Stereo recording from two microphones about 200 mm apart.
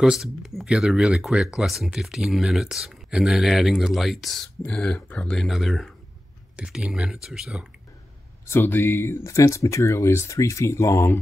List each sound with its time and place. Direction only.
0.0 s speech: centre (ahead or behind)
8.5 s speech: 10° left (ahead or behind)